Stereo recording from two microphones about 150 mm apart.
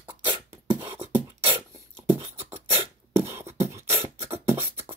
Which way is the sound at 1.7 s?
20° right (ahead or behind).